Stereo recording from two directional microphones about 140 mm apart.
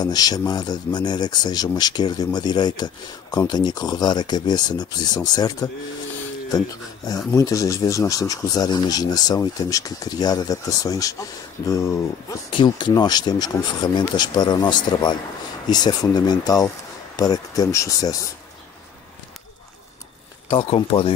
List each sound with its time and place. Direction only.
0.0 s speech: 30° left (ahead or behind)
7.3 s speech: 25° left (ahead or behind)
12.5 s speech: 35° left (ahead or behind)
20.4 s speech: 40° left (ahead or behind)